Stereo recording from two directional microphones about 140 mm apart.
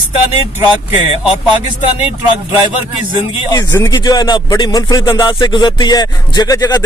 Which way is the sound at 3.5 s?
25° left (ahead or behind).